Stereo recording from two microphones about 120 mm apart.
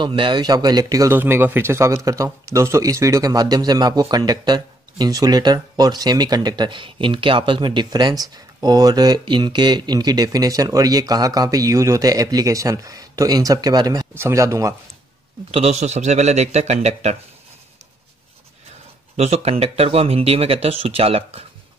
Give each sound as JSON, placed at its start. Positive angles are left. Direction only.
{"t": 0.0, "sound": "speech", "side_deg": -40}
{"t": 1.1, "sound": "speech", "side_deg": -20}
{"t": 14.1, "sound": "speech", "side_deg": -25}
{"t": 15.5, "sound": "a man's voice", "side_deg": -65}
{"t": 19.1, "sound": "speech", "side_deg": -60}